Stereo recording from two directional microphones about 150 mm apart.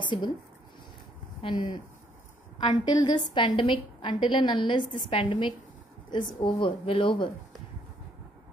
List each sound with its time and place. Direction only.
0.0 s speech: 30° left (ahead or behind)
1.4 s a woman's voice: 35° left (ahead or behind)